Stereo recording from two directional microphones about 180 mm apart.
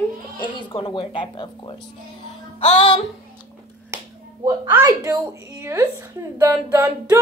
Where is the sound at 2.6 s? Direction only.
35° left (ahead or behind).